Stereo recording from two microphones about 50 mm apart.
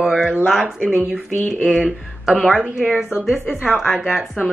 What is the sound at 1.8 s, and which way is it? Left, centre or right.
Speech, centre.